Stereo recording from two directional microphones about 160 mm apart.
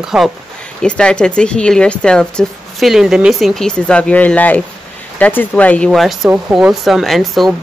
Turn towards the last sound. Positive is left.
turn(degrees=0)  # may be behind; listen again after turning